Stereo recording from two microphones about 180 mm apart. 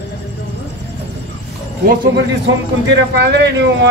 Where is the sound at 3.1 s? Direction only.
70° right (ahead or behind).